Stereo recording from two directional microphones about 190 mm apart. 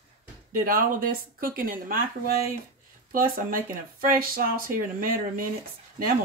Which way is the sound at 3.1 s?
45° right (ahead or behind).